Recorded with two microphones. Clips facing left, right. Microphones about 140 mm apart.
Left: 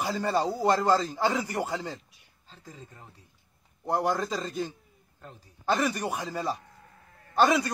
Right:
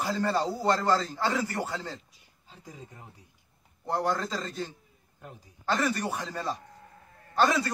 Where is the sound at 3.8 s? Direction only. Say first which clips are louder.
Left 2 dB; 15° left (ahead or behind).